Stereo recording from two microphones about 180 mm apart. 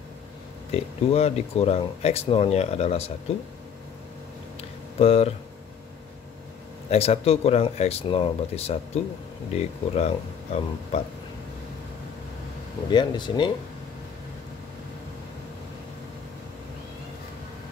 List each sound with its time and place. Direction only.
0.7 s speech: 35° left (ahead or behind)
4.6 s a sound: 35° left (ahead or behind)
6.9 s speech: 35° left (ahead or behind)
12.9 s speech: 25° left (ahead or behind)